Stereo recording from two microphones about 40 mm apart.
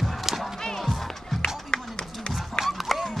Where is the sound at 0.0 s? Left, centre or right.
Centre.